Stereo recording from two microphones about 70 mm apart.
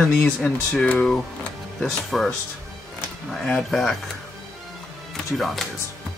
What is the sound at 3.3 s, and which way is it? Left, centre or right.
Speech, centre.